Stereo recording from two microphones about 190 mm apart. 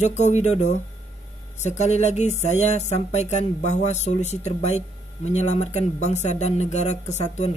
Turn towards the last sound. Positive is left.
turn(degrees=35)  # may be behind; listen again after turning